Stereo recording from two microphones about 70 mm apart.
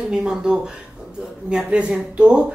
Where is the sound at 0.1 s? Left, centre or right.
Centre.